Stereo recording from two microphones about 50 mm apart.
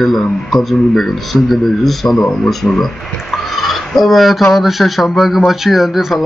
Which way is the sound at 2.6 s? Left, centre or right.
Centre.